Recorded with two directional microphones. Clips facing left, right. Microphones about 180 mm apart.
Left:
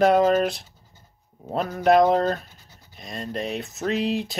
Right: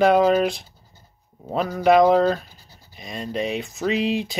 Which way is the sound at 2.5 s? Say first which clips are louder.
Right 2 dB; 35° right (ahead or behind).